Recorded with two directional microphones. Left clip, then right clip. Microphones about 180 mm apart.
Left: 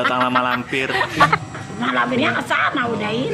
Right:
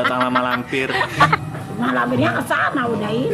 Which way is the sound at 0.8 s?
Centre (ahead or behind).